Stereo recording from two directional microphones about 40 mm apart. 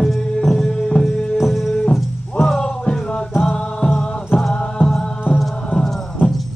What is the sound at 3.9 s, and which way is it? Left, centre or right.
Music, left.